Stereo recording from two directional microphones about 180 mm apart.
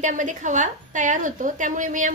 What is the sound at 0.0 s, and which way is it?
A woman's voice, 45° right (ahead or behind).